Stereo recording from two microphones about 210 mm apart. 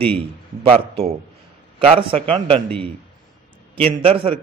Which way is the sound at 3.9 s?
25° right (ahead or behind).